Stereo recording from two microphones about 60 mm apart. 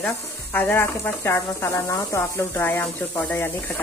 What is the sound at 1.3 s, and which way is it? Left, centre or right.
Speech, left.